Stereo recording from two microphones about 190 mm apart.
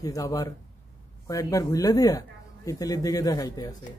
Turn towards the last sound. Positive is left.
turn(degrees=20)  # may be behind; listen again after turning